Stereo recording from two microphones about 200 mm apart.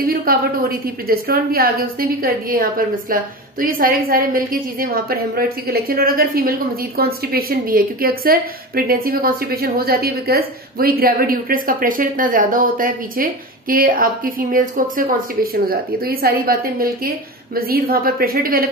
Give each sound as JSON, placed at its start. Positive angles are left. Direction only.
{"t": 0.0, "sound": "a woman's voice", "side_deg": -50}